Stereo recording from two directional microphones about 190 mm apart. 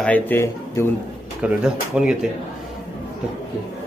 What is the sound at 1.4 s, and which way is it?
Speech, 5° right (ahead or behind).